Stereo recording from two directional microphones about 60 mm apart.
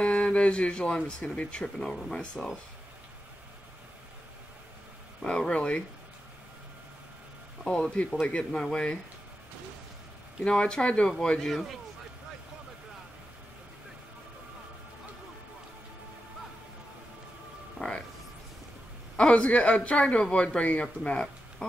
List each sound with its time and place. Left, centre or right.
0.0 s speech: centre
5.2 s speech: centre
7.6 s speech: centre
10.4 s speech: centre
17.7 s music: centre
19.1 s a man's voice: centre